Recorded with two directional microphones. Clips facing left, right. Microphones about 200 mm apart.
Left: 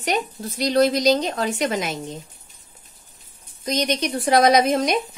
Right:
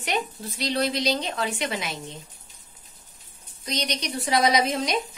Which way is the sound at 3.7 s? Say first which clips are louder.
Left 7 dB; 50° left (ahead or behind).